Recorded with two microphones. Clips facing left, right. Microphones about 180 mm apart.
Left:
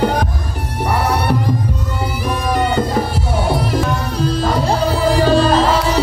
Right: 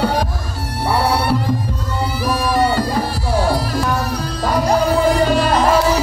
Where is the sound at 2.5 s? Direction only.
20° left (ahead or behind).